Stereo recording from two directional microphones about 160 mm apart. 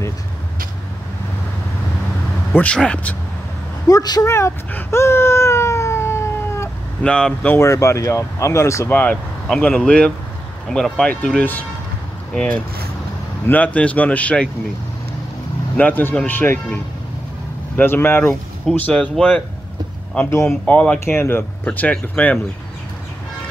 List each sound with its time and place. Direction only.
2.5 s speech: 5° left (ahead or behind)
3.8 s baby cry: 25° left (ahead or behind)
7.0 s speech: 5° left (ahead or behind)
13.7 s speech: 10° left (ahead or behind)
15.7 s speech: 10° left (ahead or behind)